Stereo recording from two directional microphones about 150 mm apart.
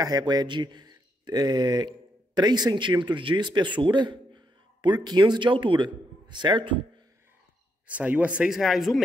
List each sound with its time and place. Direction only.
0.0 s a man's voice: 25° right (ahead or behind)
7.8 s speech: 10° right (ahead or behind)